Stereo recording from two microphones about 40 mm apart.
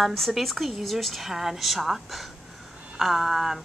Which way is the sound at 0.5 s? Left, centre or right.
Centre.